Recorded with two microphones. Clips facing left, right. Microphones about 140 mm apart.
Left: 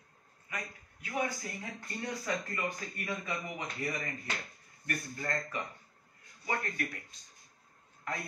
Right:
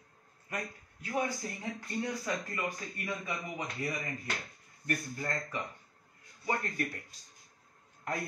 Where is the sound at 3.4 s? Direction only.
25° right (ahead or behind).